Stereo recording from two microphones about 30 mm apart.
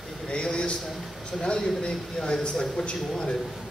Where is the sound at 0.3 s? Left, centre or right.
Left.